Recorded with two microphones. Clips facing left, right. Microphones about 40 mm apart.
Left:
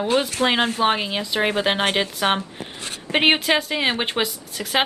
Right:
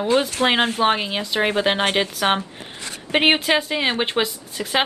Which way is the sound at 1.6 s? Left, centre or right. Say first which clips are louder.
Right 1 dB; centre.